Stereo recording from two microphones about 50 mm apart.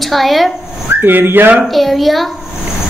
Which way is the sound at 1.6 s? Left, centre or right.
Centre.